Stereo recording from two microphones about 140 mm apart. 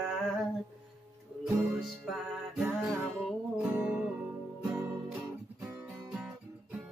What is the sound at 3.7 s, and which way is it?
Music, 10° right (ahead or behind).